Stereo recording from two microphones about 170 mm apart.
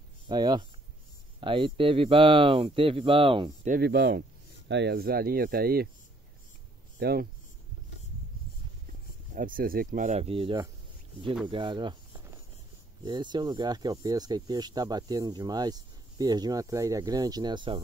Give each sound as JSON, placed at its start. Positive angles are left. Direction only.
{"t": 0.3, "sound": "speech", "side_deg": -25}
{"t": 3.8, "sound": "speech", "side_deg": -80}
{"t": 7.0, "sound": "speech", "side_deg": -65}
{"t": 9.3, "sound": "speech", "side_deg": -50}
{"t": 13.0, "sound": "speech", "side_deg": -25}